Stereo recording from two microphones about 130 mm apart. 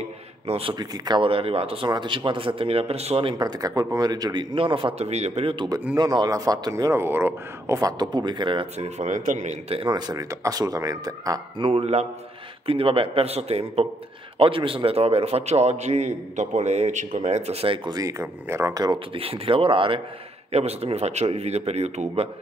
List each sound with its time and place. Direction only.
0.5 s speech: 45° right (ahead or behind)
0.7 s speech: 30° right (ahead or behind)
5.9 s speech: 30° right (ahead or behind)
8.7 s a man's voice: 60° right (ahead or behind)
9.8 s speech: 35° right (ahead or behind)
11.6 s a man's voice: 50° right (ahead or behind)
17.8 s speech: 30° right (ahead or behind)
19.1 s speech: 45° right (ahead or behind)
20.5 s a man's voice: 55° right (ahead or behind)